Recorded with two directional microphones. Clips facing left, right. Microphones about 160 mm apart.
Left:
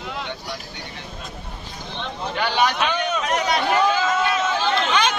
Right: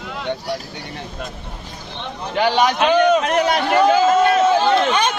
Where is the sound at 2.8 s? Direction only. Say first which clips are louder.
Right 9 dB; 55° right (ahead or behind).